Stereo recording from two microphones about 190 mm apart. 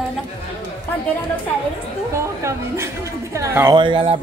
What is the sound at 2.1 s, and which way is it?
Speech, 15° right (ahead or behind).